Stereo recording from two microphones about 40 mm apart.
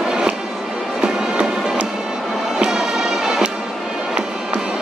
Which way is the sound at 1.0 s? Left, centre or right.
Centre.